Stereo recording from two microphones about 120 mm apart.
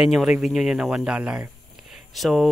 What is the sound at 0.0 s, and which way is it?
Speech, 5° right (ahead or behind).